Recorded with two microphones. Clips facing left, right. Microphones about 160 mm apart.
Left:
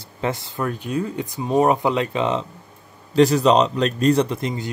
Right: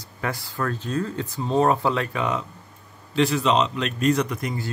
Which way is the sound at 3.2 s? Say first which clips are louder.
Left 6 dB; 40° left (ahead or behind).